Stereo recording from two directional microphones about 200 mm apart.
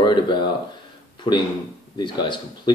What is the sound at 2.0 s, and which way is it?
Speech, 25° left (ahead or behind).